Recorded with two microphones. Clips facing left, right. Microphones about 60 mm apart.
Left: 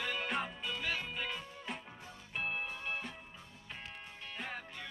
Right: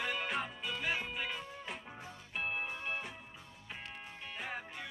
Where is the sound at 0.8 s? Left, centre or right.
Centre.